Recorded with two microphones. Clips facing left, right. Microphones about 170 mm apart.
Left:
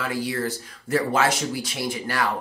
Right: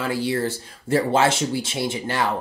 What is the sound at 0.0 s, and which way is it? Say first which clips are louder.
Speech: right 3 dB; 30° right (ahead or behind).